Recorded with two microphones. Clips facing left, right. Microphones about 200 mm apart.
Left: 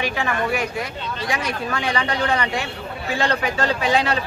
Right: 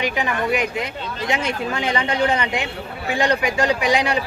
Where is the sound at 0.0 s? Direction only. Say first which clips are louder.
Right 1 dB; 15° right (ahead or behind).